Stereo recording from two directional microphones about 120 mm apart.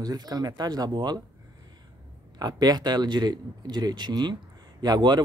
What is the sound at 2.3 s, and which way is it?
Speech, 35° right (ahead or behind).